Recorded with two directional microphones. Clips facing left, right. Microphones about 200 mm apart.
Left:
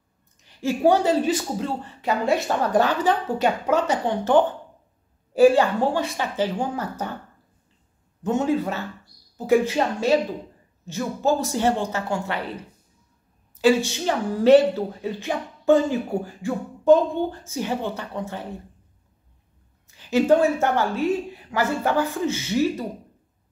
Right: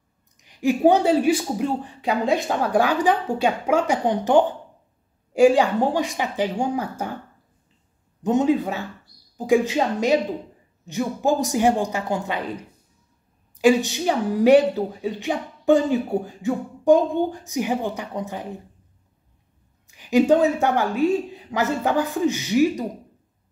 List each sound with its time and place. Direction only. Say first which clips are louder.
0.4 s speech: right 3 dB; 15° right (ahead or behind)
8.2 s speech: right 3 dB; 15° right (ahead or behind)
13.6 s speech: right 1 dB; 15° right (ahead or behind)
19.9 s speech: right 1 dB; 15° right (ahead or behind)